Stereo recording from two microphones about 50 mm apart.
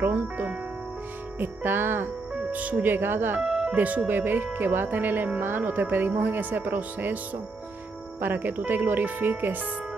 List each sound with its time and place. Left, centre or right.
0.1 s speech: right
1.4 s music: right
2.5 s speech: right
3.3 s music: centre
3.7 s speech: right
8.2 s speech: right